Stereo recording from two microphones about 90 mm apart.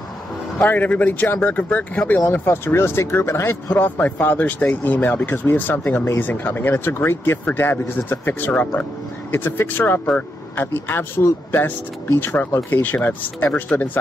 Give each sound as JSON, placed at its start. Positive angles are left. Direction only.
{"t": 0.6, "sound": "speech", "side_deg": 20}
{"t": 2.3, "sound": "speech", "side_deg": 30}